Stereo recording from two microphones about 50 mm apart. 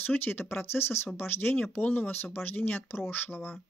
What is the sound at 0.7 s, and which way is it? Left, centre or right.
Speech, left.